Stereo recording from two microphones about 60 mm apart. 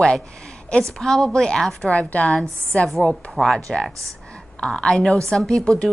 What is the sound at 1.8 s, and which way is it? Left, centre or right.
A woman's voice, left.